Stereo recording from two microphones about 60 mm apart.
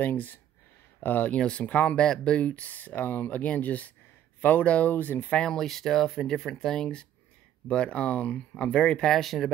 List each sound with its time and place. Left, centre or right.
0.0 s speech: left
5.4 s speech: centre